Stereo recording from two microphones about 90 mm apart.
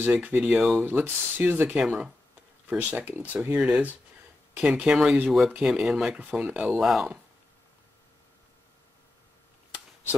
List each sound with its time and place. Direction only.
0.0 s speech: 20° right (ahead or behind)
0.8 s speech: 20° right (ahead or behind); by 7.2 s 5° right (ahead or behind)